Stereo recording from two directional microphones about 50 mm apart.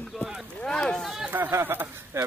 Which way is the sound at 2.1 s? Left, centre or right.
Right.